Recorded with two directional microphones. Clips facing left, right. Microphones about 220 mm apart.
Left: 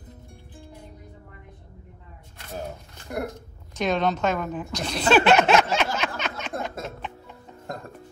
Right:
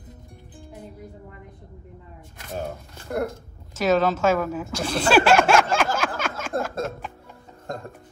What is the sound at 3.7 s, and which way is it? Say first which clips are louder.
A woman's voice: right 4 dB; 5° right (ahead or behind).